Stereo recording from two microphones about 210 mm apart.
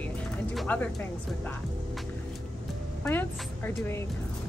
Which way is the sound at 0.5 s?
10° left (ahead or behind).